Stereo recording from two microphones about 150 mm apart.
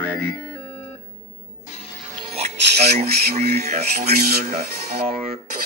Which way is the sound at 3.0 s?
90° right.